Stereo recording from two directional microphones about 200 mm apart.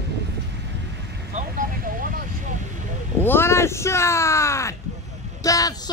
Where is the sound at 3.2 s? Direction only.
10° left (ahead or behind).